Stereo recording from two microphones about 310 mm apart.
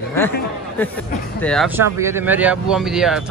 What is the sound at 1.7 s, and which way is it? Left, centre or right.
Speech, centre.